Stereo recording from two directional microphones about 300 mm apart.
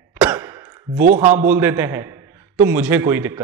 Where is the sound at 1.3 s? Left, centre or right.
Centre.